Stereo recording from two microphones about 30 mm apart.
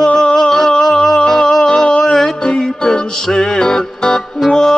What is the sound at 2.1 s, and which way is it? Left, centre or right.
Music, centre.